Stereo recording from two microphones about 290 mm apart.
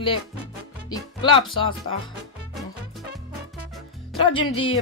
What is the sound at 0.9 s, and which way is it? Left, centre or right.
Speech, centre.